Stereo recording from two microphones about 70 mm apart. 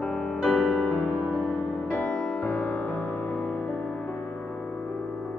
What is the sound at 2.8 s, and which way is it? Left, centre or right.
Music, centre.